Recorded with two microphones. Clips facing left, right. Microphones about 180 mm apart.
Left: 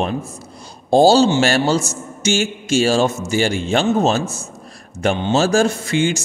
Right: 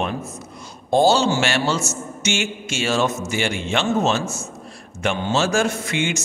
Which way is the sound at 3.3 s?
35° left (ahead or behind).